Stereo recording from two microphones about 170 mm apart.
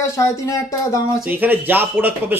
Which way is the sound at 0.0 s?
20° left (ahead or behind).